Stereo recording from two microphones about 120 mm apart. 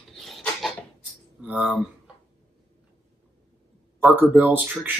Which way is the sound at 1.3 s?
10° right (ahead or behind).